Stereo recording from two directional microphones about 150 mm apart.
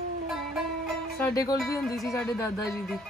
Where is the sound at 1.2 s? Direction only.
20° left (ahead or behind).